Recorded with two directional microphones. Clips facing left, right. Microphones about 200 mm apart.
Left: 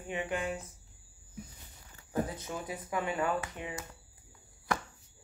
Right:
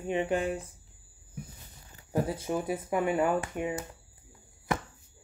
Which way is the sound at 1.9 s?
25° right (ahead or behind).